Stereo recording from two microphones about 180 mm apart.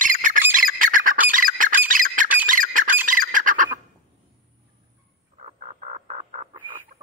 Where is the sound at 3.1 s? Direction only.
50° right (ahead or behind).